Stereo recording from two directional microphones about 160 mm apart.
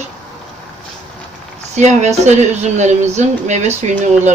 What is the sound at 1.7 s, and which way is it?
Speech, 45° right (ahead or behind).